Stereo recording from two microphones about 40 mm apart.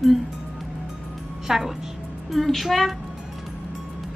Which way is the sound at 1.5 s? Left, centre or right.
Centre.